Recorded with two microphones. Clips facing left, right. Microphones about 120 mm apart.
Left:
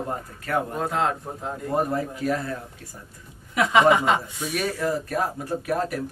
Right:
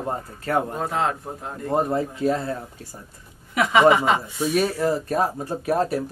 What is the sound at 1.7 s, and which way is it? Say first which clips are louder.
Speech: right 3 dB; 25° right (ahead or behind).